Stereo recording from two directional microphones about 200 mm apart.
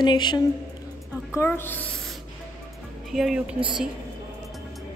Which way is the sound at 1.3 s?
10° left (ahead or behind).